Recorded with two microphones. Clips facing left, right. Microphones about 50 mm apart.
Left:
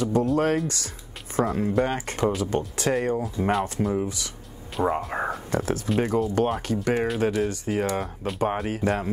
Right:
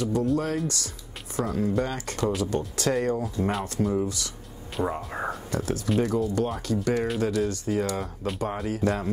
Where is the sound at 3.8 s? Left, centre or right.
Left.